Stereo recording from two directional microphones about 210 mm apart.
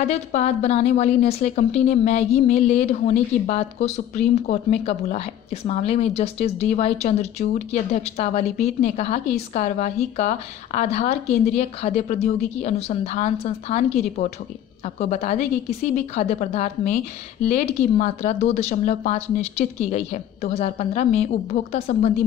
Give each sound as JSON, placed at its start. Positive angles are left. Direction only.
{"t": 0.0, "sound": "a woman's voice", "side_deg": 30}